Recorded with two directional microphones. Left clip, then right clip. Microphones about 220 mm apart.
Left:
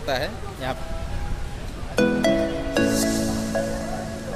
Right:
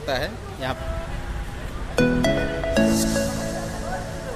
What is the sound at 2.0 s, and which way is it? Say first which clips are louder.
Music: left 1 dB; centre (ahead or behind).